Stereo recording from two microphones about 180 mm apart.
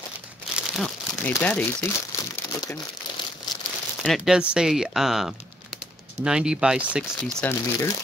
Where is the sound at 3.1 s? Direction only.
25° left (ahead or behind).